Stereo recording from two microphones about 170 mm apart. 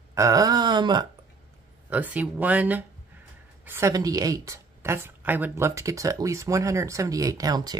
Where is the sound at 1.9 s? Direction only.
10° right (ahead or behind).